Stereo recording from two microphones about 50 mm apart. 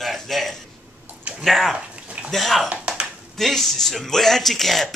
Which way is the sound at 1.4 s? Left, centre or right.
Centre.